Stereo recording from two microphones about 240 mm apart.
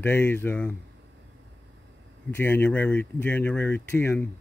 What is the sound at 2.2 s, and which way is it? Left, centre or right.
Speech, centre.